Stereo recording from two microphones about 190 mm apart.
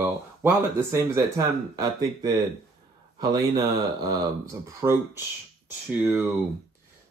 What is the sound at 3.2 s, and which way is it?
Speech, 20° right (ahead or behind).